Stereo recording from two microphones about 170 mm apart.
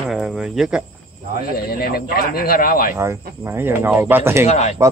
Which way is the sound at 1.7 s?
65° left (ahead or behind).